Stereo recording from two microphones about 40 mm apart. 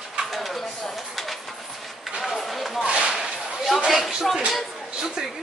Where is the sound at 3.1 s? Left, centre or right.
Centre.